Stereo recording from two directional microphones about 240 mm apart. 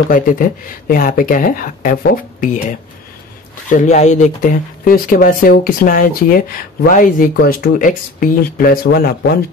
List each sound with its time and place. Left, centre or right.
0.1 s speech: left
3.6 s speech: left